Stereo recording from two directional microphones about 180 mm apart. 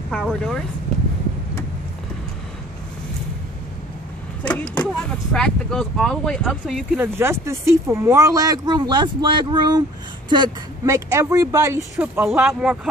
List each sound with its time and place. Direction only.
0.1 s speech: centre (ahead or behind)
4.5 s speech: 5° left (ahead or behind)
7.0 s speech: 15° right (ahead or behind)